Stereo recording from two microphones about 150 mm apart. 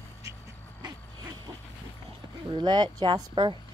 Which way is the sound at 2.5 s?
30° right (ahead or behind).